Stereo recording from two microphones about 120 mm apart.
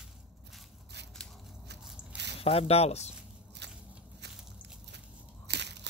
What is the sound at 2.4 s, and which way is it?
Speech, 55° left (ahead or behind).